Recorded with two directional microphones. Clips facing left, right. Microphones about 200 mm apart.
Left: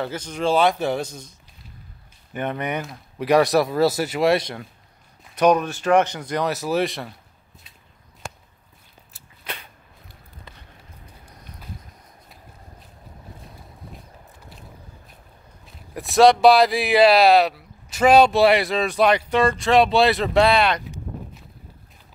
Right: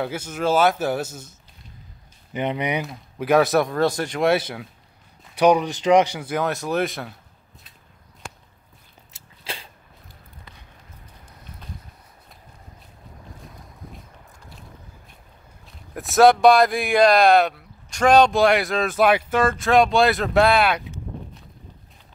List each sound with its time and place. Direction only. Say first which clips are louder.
0.0 s speech: even; 10° right (ahead or behind)
2.3 s speech: right 2 dB; 15° right (ahead or behind)
2.9 s speech: left 2 dB; centre (ahead or behind)
9.1 s a sound: right 1 dB; 30° right (ahead or behind)
15.9 s speech: even; centre (ahead or behind)